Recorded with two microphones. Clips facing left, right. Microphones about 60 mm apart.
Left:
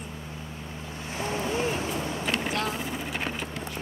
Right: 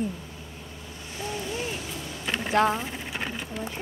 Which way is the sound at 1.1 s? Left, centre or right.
Left.